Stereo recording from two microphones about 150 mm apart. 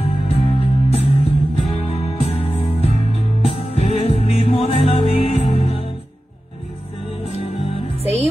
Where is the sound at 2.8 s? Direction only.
40° left (ahead or behind).